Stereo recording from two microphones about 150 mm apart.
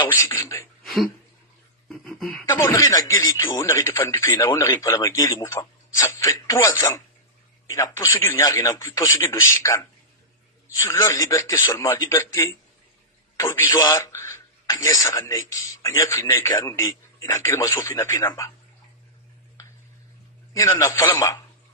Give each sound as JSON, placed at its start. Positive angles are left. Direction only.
{"t": 0.1, "sound": "speech", "side_deg": 20}
{"t": 1.9, "sound": "speech", "side_deg": 5}
{"t": 2.5, "sound": "speech", "side_deg": 20}
{"t": 13.4, "sound": "speech", "side_deg": 25}
{"t": 19.6, "sound": "a sound", "side_deg": 20}
{"t": 20.5, "sound": "speech", "side_deg": 20}